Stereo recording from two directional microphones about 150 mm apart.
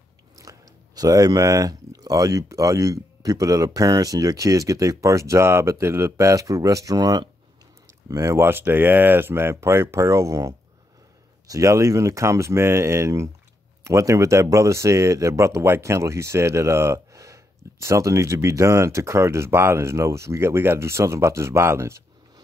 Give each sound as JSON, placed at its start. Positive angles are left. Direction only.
{"t": 0.4, "sound": "speech", "side_deg": -25}